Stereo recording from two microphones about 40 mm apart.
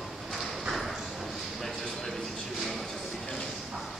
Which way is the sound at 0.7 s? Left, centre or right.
Centre.